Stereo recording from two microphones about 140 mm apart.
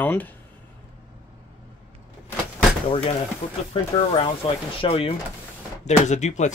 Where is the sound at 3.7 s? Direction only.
40° left (ahead or behind).